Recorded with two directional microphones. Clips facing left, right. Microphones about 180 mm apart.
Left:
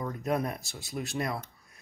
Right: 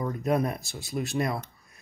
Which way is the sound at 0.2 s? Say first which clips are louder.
Right 4 dB; 25° right (ahead or behind).